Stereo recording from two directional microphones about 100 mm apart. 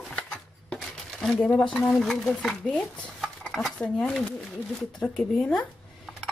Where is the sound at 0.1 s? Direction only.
10° left (ahead or behind).